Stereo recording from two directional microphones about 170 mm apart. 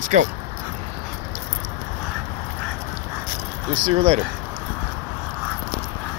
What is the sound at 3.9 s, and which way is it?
Speech, 30° right (ahead or behind).